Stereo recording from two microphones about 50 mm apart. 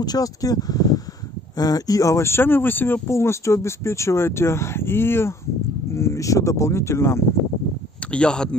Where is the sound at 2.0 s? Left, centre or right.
Left.